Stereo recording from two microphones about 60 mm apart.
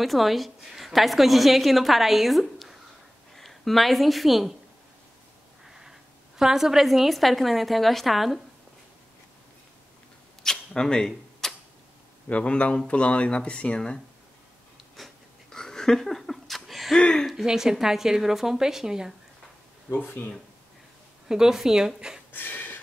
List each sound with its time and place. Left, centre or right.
0.0 s a woman's voice: centre
5.7 s a woman's voice: centre
10.4 s camera: centre
12.3 s speech: left
15.0 s a sound: centre
15.5 s laughter: centre
17.3 s a woman's voice: centre
19.9 s speech: left
21.3 s a woman's voice: centre
22.3 s a sound: left